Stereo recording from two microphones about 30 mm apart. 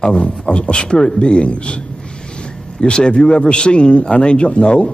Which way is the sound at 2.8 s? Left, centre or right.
Left.